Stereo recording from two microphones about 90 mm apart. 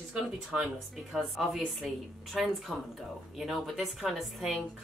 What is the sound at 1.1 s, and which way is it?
A woman's voice, centre (ahead or behind).